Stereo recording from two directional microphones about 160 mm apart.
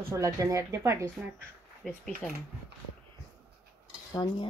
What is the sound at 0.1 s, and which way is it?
Speech, 20° right (ahead or behind).